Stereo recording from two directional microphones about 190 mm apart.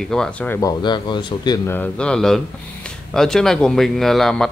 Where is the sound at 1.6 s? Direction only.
10° left (ahead or behind).